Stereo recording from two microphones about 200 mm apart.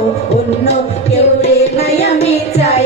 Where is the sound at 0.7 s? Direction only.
35° left (ahead or behind).